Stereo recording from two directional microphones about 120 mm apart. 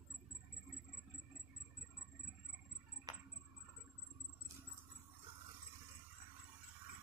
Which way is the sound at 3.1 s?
35° right (ahead or behind).